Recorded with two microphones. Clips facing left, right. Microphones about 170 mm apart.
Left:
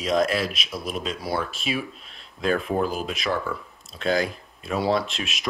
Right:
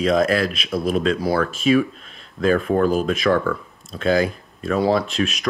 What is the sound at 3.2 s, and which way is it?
Speech, 60° right (ahead or behind).